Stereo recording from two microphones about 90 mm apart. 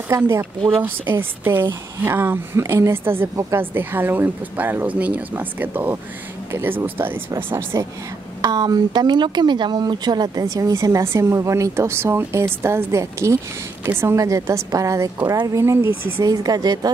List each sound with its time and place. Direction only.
0.1 s speech: 30° right (ahead or behind)
0.6 s speech: 75° right (ahead or behind)
1.4 s a woman's voice: 25° right (ahead or behind)
7.7 s speech: 40° right (ahead or behind)
8.4 s speech: 50° right (ahead or behind)
15.6 s a woman's voice: 30° right (ahead or behind)
16.2 s speech: 45° right (ahead or behind)